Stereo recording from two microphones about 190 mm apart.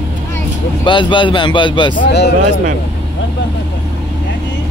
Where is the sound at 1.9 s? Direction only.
60° left (ahead or behind).